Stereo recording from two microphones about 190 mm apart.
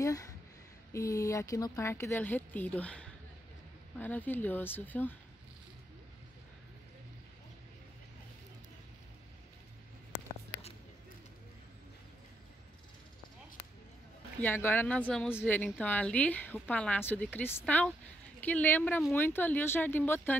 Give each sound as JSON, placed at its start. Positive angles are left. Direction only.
{"t": 0.0, "sound": "a sound", "side_deg": 15}
{"t": 0.9, "sound": "a woman's voice", "side_deg": 15}
{"t": 14.4, "sound": "a woman's voice", "side_deg": 10}